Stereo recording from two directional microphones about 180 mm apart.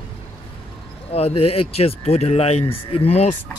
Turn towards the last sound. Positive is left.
turn(degrees=35)  # may be behind; listen again after turning